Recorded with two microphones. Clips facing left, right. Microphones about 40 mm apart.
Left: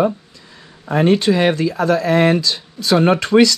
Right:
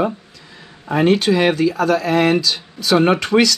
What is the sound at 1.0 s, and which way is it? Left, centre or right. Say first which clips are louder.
Speech: even; right.